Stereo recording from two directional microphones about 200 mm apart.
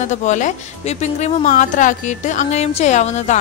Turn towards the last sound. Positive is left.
turn(degrees=35)  # may be behind; listen again after turning